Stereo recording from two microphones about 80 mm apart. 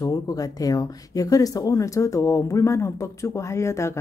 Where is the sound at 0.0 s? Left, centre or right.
Left.